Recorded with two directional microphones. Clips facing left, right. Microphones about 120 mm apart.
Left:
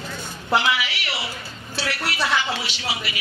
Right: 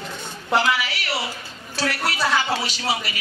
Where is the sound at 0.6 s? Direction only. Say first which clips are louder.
Right 5 dB; 40° right (ahead or behind).